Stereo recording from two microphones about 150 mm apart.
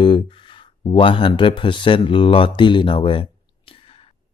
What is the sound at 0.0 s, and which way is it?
Speech, 35° left (ahead or behind).